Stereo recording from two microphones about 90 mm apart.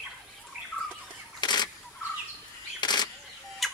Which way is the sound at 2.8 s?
50° left (ahead or behind).